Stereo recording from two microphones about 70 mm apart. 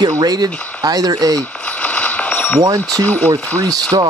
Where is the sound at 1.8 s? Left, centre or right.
Left.